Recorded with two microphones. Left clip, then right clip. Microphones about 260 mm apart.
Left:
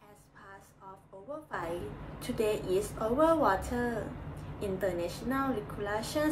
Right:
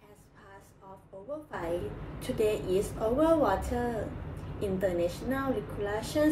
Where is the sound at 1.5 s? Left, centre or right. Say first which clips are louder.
Right 2 dB; left.